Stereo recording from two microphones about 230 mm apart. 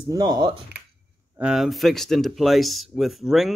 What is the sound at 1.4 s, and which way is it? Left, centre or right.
Speech, centre.